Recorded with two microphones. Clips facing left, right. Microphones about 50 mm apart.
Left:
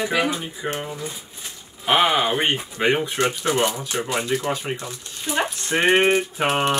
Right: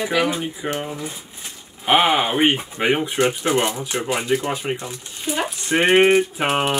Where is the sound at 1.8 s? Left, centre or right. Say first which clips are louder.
Right 2 dB; centre.